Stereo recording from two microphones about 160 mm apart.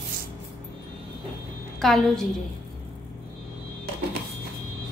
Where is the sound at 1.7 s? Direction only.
Centre (ahead or behind).